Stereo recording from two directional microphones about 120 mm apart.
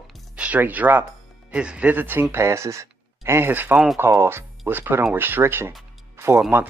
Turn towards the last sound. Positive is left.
turn(degrees=-20)  # may be behind; listen again after turning